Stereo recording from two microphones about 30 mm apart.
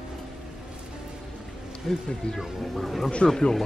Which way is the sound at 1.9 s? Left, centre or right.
Centre.